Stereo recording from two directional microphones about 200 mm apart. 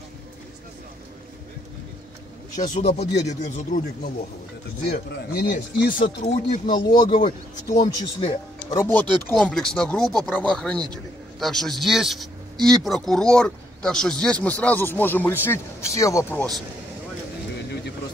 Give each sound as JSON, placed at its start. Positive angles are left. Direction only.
{"t": 2.5, "sound": "speech", "side_deg": 40}
{"t": 5.3, "sound": "speech", "side_deg": 50}
{"t": 6.9, "sound": "speech", "side_deg": 20}
{"t": 8.6, "sound": "speech", "side_deg": 15}
{"t": 9.3, "sound": "speech", "side_deg": 5}